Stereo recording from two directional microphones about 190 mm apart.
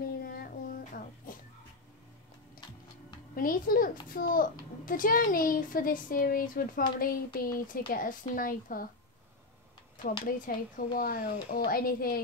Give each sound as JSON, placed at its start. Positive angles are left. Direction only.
{"t": 0.2, "sound": "a sound", "side_deg": 50}
{"t": 3.3, "sound": "a child's voice", "side_deg": 50}
{"t": 10.2, "sound": "a child's voice", "side_deg": 45}